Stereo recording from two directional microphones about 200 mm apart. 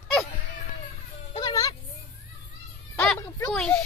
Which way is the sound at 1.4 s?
20° left (ahead or behind).